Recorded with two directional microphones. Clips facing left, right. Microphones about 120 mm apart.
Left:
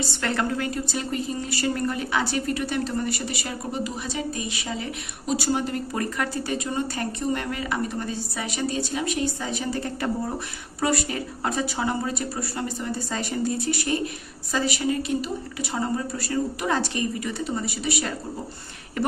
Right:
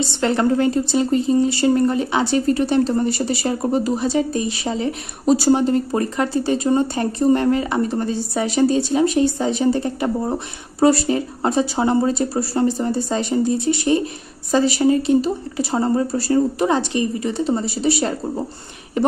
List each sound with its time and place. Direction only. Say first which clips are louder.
0.0 s a woman's voice: right 8 dB; 25° right (ahead or behind)